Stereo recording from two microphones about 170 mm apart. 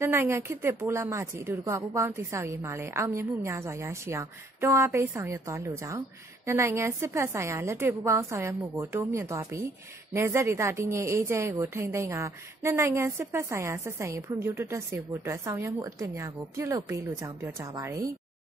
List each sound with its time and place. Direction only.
0.0 s a woman's voice: 15° right (ahead or behind)